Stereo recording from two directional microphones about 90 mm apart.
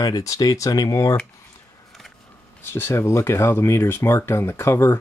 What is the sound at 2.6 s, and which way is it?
Speech, 25° left (ahead or behind).